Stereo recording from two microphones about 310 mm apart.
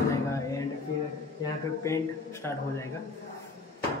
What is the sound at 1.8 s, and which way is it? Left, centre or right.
Speech, centre.